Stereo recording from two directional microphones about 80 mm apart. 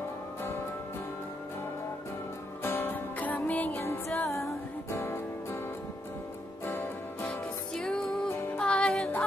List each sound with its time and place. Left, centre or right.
2.6 s music: left
3.8 s music: left
6.6 s music: left
7.2 s music: centre